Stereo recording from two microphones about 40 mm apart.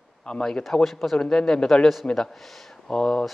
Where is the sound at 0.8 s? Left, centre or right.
Centre.